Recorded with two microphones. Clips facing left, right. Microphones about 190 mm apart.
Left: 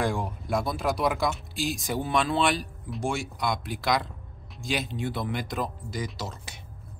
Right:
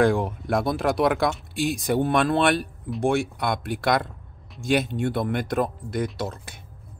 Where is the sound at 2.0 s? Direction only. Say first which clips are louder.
Right 4 dB; 55° right (ahead or behind).